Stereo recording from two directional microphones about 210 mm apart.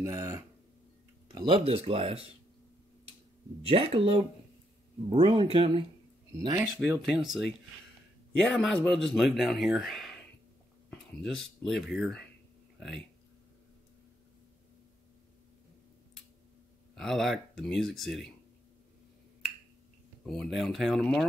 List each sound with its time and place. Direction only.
0.0 s speech: 15° right (ahead or behind)
3.6 s speech: 25° right (ahead or behind)
6.3 s speech: 15° right (ahead or behind)
7.2 s speech: centre (ahead or behind)
12.7 s a sound: centre (ahead or behind)
16.9 s speech: centre (ahead or behind)
20.2 s speech: centre (ahead or behind)